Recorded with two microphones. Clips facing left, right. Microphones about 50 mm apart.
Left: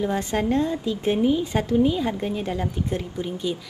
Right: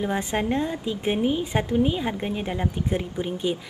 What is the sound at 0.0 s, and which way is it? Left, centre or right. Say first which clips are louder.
A woman's voice: left 2 dB; centre.